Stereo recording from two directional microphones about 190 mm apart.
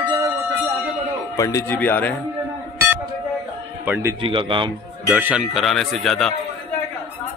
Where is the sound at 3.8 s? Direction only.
10° right (ahead or behind).